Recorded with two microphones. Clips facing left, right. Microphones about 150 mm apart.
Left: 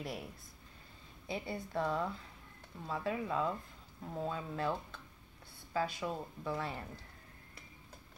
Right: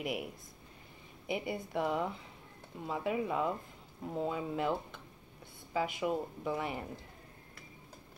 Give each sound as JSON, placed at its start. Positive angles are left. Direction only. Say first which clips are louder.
{"t": 0.0, "sound": "speech", "louder": "right 5 dB", "side_deg": -15}